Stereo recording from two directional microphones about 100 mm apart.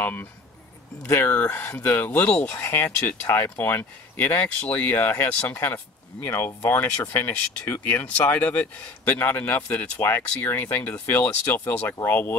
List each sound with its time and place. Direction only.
0.0 s speech: 20° left (ahead or behind)